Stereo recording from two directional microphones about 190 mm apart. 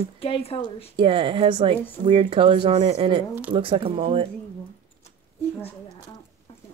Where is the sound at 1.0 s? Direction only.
25° right (ahead or behind).